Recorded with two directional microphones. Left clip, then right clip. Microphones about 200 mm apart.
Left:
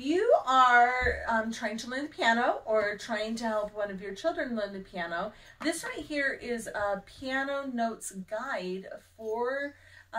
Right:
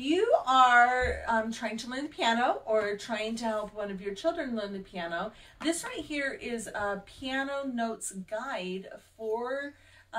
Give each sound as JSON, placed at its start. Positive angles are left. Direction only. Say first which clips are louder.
{"t": 0.0, "sound": "speech", "louder": "left 1 dB", "side_deg": 20}